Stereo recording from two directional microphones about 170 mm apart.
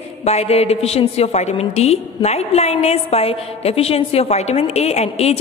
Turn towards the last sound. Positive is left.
turn(degrees=40)  # may be behind; listen again after turning